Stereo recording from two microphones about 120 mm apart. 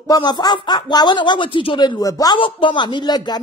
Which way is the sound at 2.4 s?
45° left (ahead or behind).